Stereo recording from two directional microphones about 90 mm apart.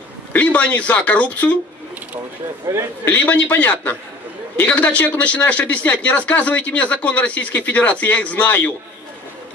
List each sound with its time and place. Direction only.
0.3 s speech: 15° left (ahead or behind)
2.6 s a man's voice: 30° right (ahead or behind)
3.1 s a man's voice: 20° left (ahead or behind)